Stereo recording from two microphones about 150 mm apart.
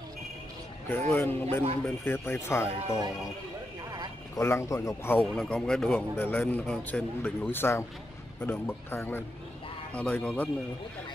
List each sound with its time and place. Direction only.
1.1 s speech: 15° left (ahead or behind)
4.4 s speech: 20° left (ahead or behind)